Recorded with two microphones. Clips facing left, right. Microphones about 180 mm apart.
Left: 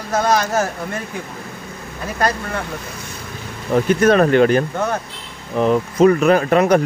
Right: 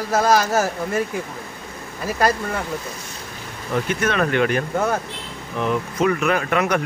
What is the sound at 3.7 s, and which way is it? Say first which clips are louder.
Speech: left 8 dB; 40° left (ahead or behind).